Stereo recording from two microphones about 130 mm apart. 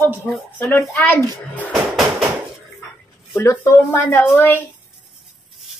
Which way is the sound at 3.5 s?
20° left (ahead or behind).